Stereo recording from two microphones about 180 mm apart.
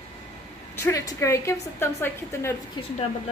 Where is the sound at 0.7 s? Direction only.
15° left (ahead or behind).